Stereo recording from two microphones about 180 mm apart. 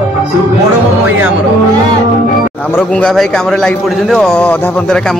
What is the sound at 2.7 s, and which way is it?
A man's voice, 5° left (ahead or behind).